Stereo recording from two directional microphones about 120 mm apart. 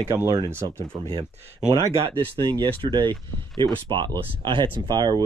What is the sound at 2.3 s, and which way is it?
Speech, 45° right (ahead or behind).